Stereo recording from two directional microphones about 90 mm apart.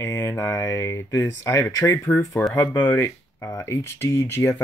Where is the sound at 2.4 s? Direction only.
25° left (ahead or behind).